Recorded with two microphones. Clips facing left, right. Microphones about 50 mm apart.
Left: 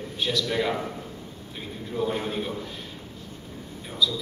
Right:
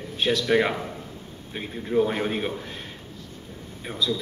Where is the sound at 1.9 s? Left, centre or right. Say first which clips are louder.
Right 5 dB; right.